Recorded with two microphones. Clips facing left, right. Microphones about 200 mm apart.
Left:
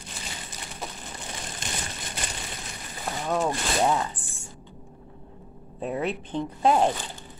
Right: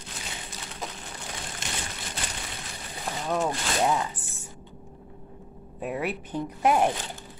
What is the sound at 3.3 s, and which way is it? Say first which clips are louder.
Speech: left 1 dB; centre (ahead or behind).